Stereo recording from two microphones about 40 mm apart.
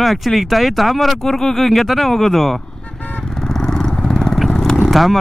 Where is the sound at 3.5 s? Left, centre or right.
Centre.